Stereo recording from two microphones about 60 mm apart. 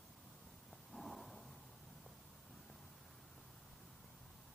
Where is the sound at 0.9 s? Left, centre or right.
Centre.